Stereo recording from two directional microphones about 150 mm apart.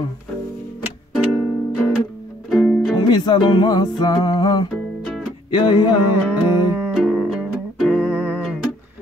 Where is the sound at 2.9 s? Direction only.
30° left (ahead or behind).